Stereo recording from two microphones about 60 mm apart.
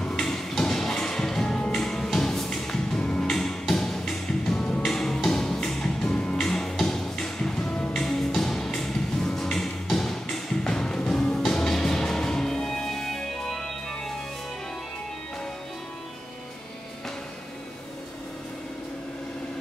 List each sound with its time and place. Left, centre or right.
0.0 s music: centre
7.7 s music: centre
8.0 s music: centre